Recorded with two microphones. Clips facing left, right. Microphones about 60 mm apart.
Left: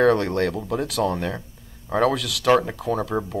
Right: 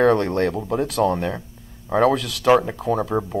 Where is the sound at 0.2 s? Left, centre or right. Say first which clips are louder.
Right 2 dB; right.